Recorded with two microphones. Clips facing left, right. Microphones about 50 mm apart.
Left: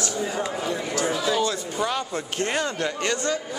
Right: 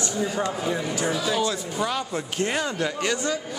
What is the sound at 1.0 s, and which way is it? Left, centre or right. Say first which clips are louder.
Speech: left 2 dB; centre.